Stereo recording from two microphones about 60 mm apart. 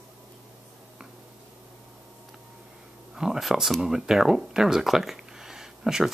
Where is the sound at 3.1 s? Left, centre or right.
Centre.